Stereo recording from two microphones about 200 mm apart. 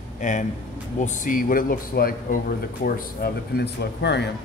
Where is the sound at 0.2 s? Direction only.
40° left (ahead or behind).